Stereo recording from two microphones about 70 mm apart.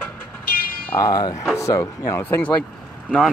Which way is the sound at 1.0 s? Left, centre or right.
Left.